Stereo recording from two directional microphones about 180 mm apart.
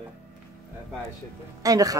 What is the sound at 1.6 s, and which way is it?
Speech, 20° right (ahead or behind).